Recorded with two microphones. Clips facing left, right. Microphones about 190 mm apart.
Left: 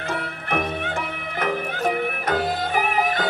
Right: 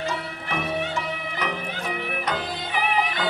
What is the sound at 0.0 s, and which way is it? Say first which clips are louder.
Music: left 1 dB; 55° left (ahead or behind).